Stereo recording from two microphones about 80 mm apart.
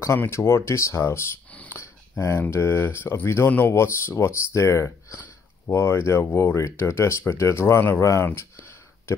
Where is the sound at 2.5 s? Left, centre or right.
Left.